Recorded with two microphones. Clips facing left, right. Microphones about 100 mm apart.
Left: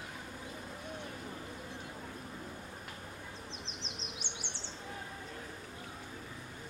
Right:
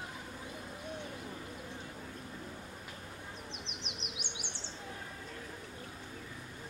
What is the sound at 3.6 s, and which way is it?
Bird, 15° right (ahead or behind).